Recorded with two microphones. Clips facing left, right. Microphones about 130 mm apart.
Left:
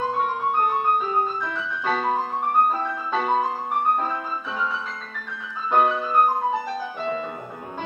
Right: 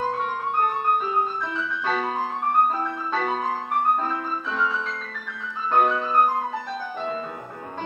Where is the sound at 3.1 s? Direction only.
5° left (ahead or behind).